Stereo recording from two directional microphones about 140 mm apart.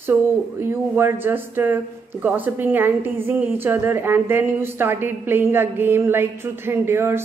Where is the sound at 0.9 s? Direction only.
15° right (ahead or behind).